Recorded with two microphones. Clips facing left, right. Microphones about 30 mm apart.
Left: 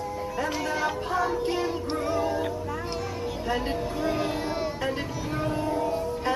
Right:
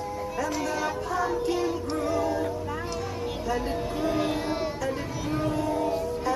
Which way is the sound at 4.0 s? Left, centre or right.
Centre.